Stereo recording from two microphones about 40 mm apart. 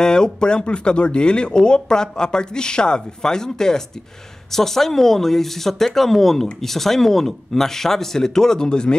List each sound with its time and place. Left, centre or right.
0.0 s speech: centre